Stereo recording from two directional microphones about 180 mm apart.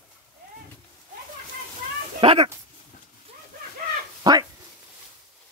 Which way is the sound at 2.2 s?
30° right (ahead or behind).